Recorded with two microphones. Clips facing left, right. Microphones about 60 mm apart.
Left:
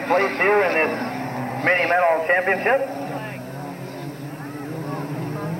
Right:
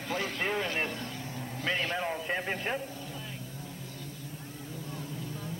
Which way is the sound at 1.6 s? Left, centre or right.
Left.